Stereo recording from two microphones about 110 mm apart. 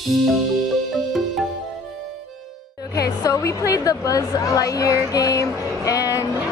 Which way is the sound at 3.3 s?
30° left (ahead or behind).